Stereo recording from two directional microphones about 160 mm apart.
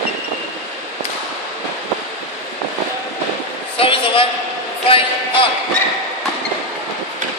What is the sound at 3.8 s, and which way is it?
A man's voice, 35° left (ahead or behind).